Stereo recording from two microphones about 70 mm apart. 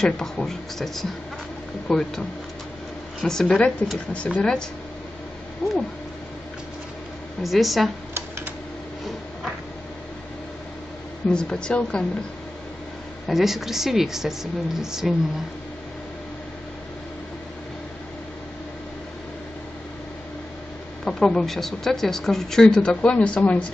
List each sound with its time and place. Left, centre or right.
0.0 s a woman's voice: centre
3.5 s speech: centre
7.4 s a woman's voice: centre
11.2 s speech: centre
13.3 s a woman's voice: centre
21.0 s speech: centre